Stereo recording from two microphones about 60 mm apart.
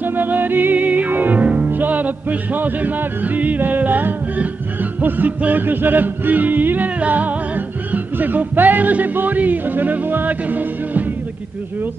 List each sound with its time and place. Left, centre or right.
0.0 s music: right